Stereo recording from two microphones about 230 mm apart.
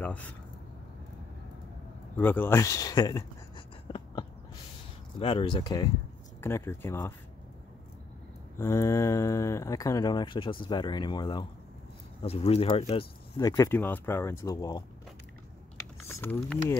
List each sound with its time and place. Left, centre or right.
0.0 s speech: centre
2.1 s speech: centre
8.5 s speech: centre
16.1 s speech: centre